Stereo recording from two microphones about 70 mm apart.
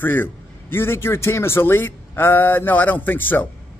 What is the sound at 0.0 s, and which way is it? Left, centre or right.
Speech, left.